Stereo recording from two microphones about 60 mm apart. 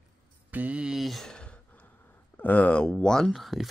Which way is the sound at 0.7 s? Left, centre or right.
Centre.